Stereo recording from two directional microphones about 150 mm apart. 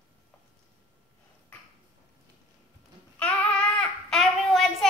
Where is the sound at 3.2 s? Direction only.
5° left (ahead or behind).